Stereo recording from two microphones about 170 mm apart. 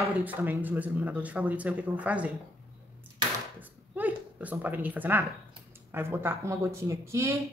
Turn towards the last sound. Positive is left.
turn(degrees=-15)  # may be behind; listen again after turning